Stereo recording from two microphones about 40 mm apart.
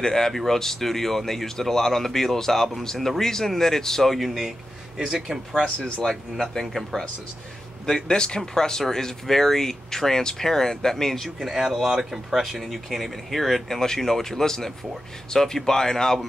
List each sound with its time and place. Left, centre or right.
0.0 s speech: centre
4.4 s a man's voice: centre
5.5 s speech: centre
11.3 s speech: centre